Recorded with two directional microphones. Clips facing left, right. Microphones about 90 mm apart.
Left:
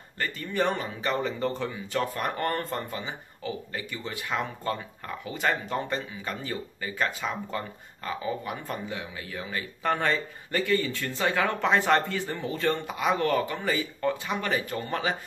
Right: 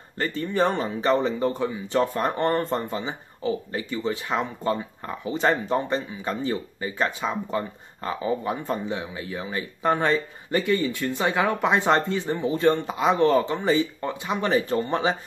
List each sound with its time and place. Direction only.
0.2 s speech: 30° right (ahead or behind)
1.4 s speech: 15° right (ahead or behind)